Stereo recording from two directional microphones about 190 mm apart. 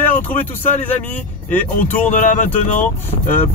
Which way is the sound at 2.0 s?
45° left (ahead or behind).